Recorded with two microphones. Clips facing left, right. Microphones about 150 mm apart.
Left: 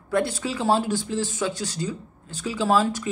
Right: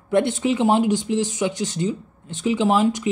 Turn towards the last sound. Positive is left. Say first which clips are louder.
# right 3 dB
turn(degrees=-20)  # may be behind; listen again after turning